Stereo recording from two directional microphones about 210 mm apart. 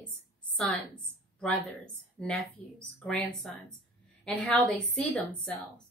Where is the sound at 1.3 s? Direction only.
5° left (ahead or behind).